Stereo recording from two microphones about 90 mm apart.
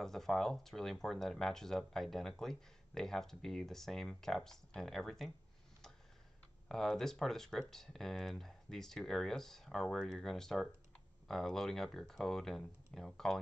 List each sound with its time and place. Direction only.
0.0 s speech: 5° left (ahead or behind)
6.7 s speech: 5° left (ahead or behind)